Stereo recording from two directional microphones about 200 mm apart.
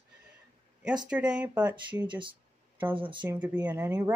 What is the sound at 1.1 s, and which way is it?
Speech, 5° right (ahead or behind).